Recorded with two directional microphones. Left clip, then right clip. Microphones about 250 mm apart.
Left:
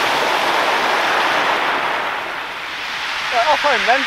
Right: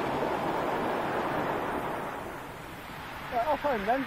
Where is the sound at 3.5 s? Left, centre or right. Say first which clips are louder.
Left 13 dB; centre.